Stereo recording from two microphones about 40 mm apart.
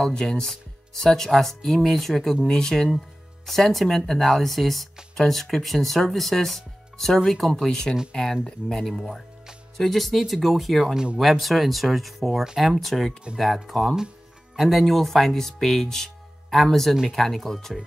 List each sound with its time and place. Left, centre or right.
0.1 s speech: centre
2.4 s speech: centre